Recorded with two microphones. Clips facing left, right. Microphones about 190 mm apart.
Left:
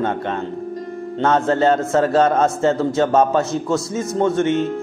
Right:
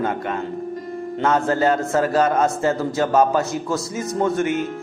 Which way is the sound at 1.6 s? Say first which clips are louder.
Left 3 dB; centre (ahead or behind).